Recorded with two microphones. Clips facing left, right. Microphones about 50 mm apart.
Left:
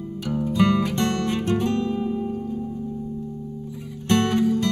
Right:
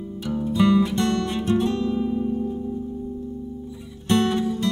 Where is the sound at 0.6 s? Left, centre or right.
Left.